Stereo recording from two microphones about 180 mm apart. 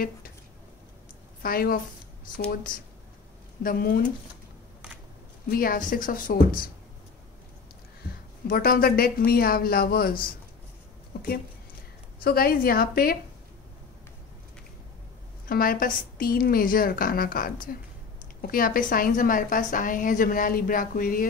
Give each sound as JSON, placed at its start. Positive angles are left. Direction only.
{"t": 1.4, "sound": "a woman's voice", "side_deg": 55}
{"t": 5.5, "sound": "a woman's voice", "side_deg": 55}
{"t": 8.5, "sound": "speech", "side_deg": 55}
{"t": 11.1, "sound": "a sound", "side_deg": 60}
{"t": 12.2, "sound": "speech", "side_deg": 55}
{"t": 15.4, "sound": "a woman's voice", "side_deg": 55}